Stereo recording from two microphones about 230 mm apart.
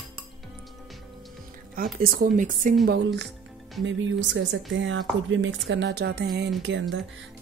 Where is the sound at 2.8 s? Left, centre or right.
Right.